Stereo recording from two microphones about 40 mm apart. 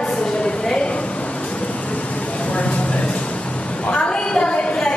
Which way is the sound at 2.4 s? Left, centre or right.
Left.